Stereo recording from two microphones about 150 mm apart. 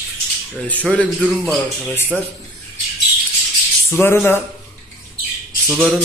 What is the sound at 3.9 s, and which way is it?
Mantra, 15° left (ahead or behind).